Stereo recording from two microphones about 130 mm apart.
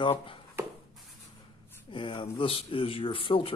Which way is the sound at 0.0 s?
40° left (ahead or behind).